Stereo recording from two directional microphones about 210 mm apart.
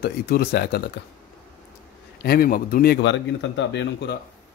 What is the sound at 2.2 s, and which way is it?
A man's voice, 45° left (ahead or behind).